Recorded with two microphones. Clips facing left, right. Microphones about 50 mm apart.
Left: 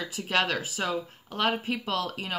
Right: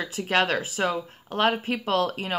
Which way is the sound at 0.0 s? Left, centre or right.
Right.